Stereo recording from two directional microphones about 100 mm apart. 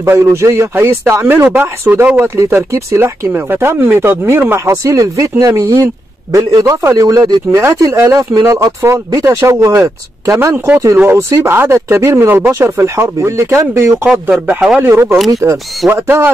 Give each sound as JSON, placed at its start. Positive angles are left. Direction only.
{"t": 0.1, "sound": "a man's voice", "side_deg": -25}
{"t": 10.5, "sound": "speech", "side_deg": -15}
{"t": 15.1, "sound": "speech", "side_deg": 0}
{"t": 15.9, "sound": "speech", "side_deg": -25}